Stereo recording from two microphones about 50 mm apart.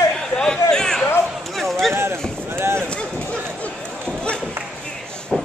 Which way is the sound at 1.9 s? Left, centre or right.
Right.